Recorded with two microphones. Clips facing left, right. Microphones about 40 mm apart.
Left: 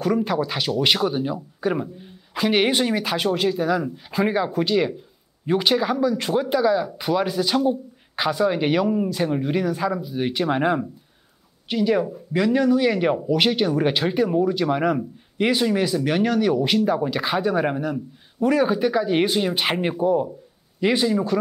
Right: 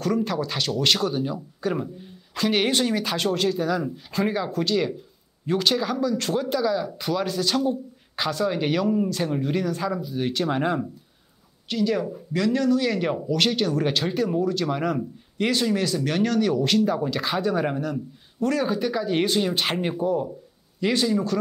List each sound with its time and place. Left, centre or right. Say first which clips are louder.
0.0 s speech: left 3 dB; centre